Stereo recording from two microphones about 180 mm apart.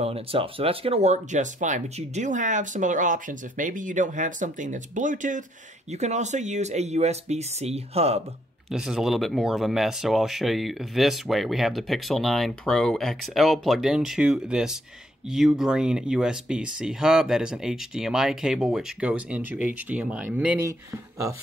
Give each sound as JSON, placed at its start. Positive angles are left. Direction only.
{"t": 0.0, "sound": "speech", "side_deg": -30}
{"t": 8.6, "sound": "speech", "side_deg": -5}